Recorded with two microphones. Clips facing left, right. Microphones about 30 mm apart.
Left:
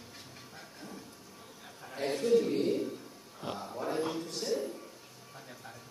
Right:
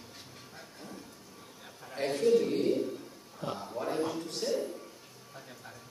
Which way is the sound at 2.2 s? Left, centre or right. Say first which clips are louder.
Right 1 dB; centre.